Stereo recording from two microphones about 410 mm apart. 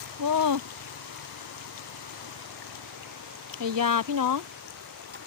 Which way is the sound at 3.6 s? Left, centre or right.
Right.